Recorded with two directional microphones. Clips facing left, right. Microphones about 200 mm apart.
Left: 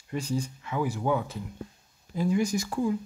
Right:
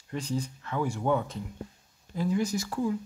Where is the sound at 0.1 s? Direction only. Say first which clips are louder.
Left 2 dB; 10° left (ahead or behind).